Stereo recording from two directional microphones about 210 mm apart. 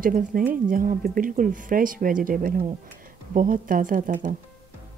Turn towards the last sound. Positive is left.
turn(degrees=-40)  # may be behind; listen again after turning